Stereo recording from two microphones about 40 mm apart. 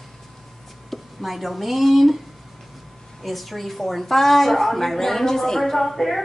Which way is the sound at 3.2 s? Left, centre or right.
Centre.